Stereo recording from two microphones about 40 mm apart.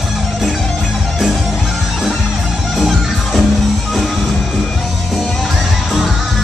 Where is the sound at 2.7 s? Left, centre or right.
Centre.